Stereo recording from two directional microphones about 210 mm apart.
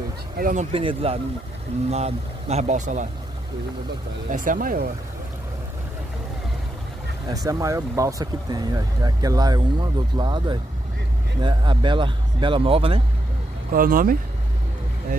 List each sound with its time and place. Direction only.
0.4 s speech: 40° right (ahead or behind)
0.7 s speech: 25° right (ahead or behind)
4.3 s speech: 40° right (ahead or behind)
7.2 s speech: 15° right (ahead or behind)
13.7 s speech: 40° right (ahead or behind)